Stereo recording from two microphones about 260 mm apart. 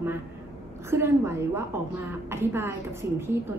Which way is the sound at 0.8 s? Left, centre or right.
Centre.